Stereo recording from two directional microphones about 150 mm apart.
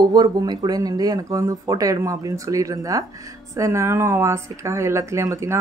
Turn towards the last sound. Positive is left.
turn(degrees=-20)  # may be behind; listen again after turning